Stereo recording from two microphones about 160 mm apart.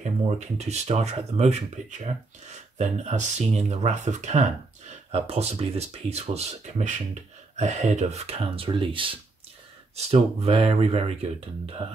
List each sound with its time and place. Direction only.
0.0 s speech: 45° right (ahead or behind)